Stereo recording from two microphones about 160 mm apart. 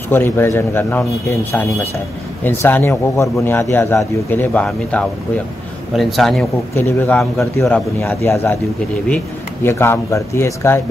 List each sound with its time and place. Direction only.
0.1 s a man's voice: 15° left (ahead or behind)
2.4 s a man's voice: 15° left (ahead or behind)
6.7 s a man's voice: 15° left (ahead or behind)